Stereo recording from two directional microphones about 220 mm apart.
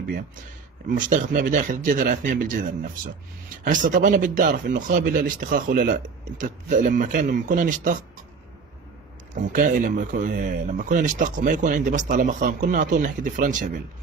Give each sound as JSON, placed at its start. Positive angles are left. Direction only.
{"t": 0.8, "sound": "speech", "side_deg": -35}
{"t": 9.3, "sound": "speech", "side_deg": -35}